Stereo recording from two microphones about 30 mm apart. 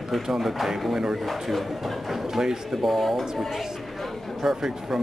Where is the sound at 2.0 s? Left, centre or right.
Centre.